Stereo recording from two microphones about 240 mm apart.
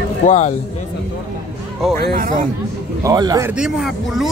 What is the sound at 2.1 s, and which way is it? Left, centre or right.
Speech, right.